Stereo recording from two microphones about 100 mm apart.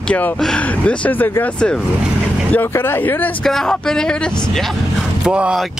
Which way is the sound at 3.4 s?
5° left (ahead or behind).